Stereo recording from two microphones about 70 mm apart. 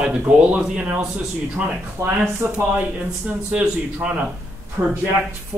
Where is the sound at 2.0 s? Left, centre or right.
Right.